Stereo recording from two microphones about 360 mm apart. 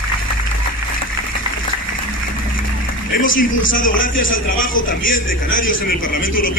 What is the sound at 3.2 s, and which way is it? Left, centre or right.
A man's voice, left.